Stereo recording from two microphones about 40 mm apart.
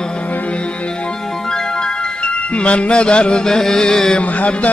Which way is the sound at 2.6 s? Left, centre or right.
Left.